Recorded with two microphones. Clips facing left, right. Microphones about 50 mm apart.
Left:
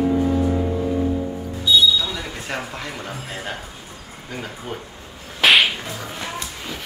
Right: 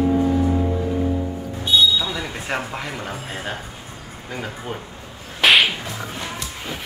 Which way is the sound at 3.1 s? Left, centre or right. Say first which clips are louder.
Right 1 dB; right.